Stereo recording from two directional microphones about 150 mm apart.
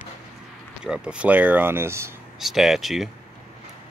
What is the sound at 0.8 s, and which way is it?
Speech, 5° right (ahead or behind).